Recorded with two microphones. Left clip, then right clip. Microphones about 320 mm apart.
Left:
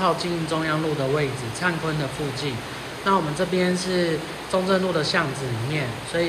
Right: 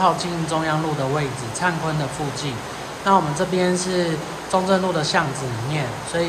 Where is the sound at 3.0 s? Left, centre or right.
Centre.